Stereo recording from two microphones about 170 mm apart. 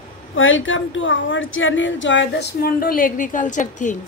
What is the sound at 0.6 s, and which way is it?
Speech, 90° left.